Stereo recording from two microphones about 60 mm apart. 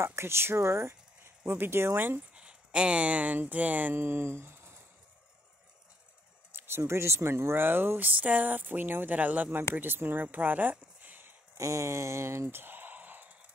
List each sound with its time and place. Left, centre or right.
0.0 s speech: right
2.3 s speech: centre
3.9 s speech: right
6.5 s a sound: right
6.9 s speech: right
11.5 s a sound: right